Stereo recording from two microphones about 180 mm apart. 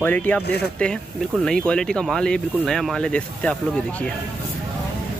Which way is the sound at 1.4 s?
5° left (ahead or behind).